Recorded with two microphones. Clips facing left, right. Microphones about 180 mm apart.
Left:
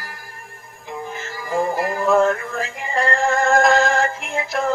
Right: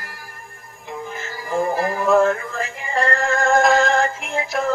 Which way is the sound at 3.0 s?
Centre (ahead or behind).